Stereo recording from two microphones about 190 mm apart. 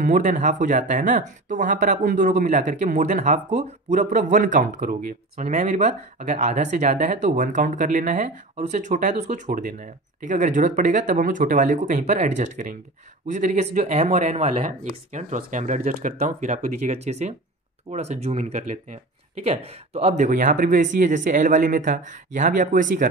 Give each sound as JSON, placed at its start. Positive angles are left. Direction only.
{"t": 0.0, "sound": "speech", "side_deg": -40}